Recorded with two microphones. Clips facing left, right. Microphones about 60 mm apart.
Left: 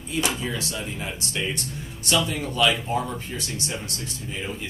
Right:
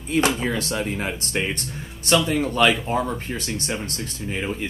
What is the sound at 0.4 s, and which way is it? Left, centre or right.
Speech, right.